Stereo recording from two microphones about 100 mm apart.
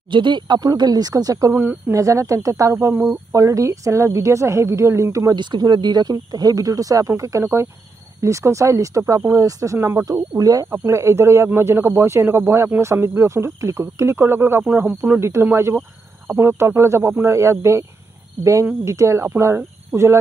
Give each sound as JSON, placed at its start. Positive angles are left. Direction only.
{"t": 0.1, "sound": "speech", "side_deg": -50}
{"t": 1.5, "sound": "speech", "side_deg": -20}
{"t": 2.0, "sound": "speech", "side_deg": -30}
{"t": 5.3, "sound": "speech", "side_deg": -50}
{"t": 10.7, "sound": "speech", "side_deg": -25}